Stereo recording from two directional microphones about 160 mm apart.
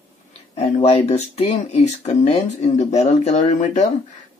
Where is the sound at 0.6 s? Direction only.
40° left (ahead or behind).